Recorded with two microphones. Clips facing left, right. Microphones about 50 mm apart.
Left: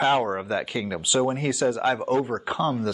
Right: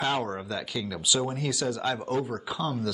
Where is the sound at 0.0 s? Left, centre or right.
Left.